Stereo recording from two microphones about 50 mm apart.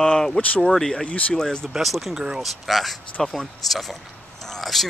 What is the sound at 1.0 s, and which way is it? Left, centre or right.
Speech, left.